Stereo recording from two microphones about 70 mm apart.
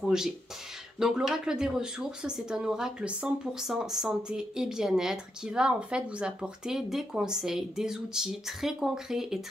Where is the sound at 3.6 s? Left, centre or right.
Centre.